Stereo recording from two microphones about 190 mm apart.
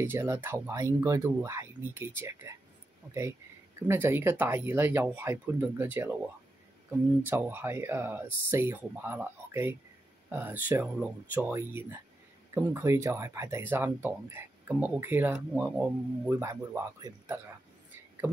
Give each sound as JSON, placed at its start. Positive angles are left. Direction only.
{"t": 0.0, "sound": "speech", "side_deg": -10}
{"t": 7.2, "sound": "speech", "side_deg": -10}